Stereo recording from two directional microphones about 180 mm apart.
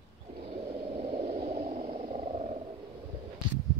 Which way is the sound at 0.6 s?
30° right (ahead or behind).